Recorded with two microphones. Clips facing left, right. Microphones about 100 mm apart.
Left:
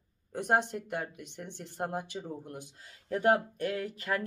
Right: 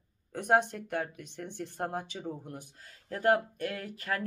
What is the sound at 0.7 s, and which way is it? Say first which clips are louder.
Speech: right 1 dB; 10° left (ahead or behind).